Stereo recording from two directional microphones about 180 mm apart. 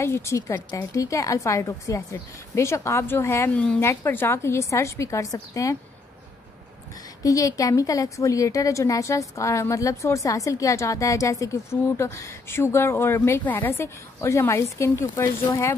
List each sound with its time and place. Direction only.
0.0 s a woman's voice: 15° left (ahead or behind)
7.2 s a woman's voice: 20° left (ahead or behind)